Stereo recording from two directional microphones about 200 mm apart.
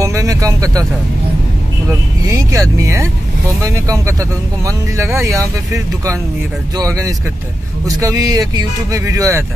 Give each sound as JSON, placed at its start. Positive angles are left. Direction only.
{"t": 0.0, "sound": "speech", "side_deg": -15}
{"t": 1.9, "sound": "speech", "side_deg": -15}